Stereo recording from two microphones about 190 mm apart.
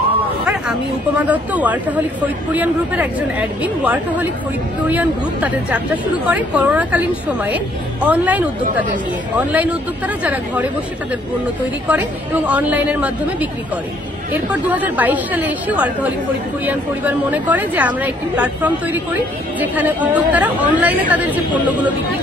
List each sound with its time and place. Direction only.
0.2 s a sound: 5° right (ahead or behind)
1.2 s a woman's voice: 10° right (ahead or behind)
11.9 s a woman's voice: 10° right (ahead or behind)